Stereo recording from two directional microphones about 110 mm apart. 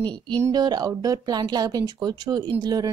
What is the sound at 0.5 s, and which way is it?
A woman's voice, 40° right (ahead or behind).